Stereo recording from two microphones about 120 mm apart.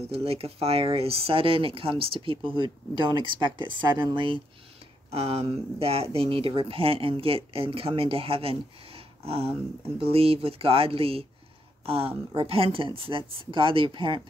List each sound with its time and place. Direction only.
0.1 s speech: 55° right (ahead or behind)
5.1 s speech: 55° right (ahead or behind)